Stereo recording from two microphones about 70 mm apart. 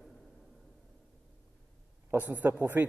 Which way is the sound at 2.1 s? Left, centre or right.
Right.